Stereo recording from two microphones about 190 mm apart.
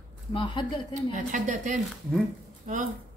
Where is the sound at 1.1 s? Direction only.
40° right (ahead or behind).